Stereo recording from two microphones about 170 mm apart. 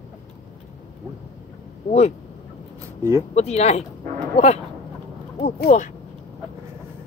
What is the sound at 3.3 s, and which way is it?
Speech, 40° left (ahead or behind).